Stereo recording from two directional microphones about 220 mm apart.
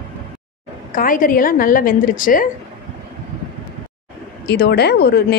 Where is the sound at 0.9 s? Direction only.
40° left (ahead or behind).